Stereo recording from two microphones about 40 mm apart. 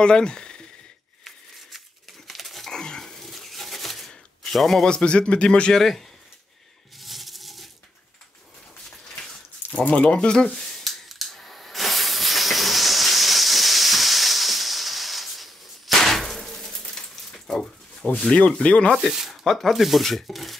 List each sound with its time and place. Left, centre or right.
0.0 s speech: left
2.2 s dog: centre
2.7 s a sound: centre
4.8 s speech: left
5.7 s a man's voice: centre
7.0 s a sound: centre
9.1 s a sound: centre
9.8 s speech: left; by 10.7 s centre
10.7 s steam: centre
16.0 s a sound: centre
18.1 s speech: left
18.9 s rub: centre
19.4 s speech: centre